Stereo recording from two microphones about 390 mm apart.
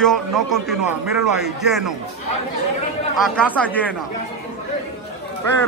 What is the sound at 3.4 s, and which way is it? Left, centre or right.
Speech, centre.